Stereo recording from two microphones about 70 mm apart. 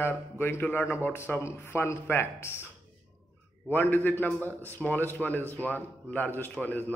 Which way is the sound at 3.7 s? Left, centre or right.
Left.